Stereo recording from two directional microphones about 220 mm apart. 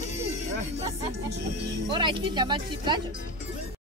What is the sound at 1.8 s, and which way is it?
Speech, 20° right (ahead or behind).